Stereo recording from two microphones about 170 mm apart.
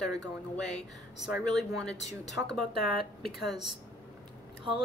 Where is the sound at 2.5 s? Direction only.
70° left (ahead or behind).